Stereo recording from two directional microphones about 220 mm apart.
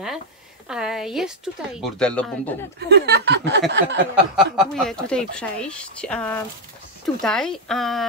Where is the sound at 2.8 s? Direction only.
50° right (ahead or behind).